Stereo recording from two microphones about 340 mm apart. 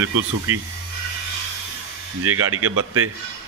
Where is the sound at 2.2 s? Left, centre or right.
Right.